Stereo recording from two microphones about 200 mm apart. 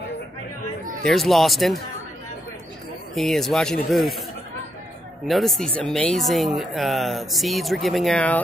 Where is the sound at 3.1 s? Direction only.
Centre (ahead or behind).